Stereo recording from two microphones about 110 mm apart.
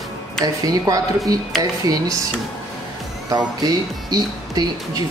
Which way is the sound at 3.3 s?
35° right (ahead or behind).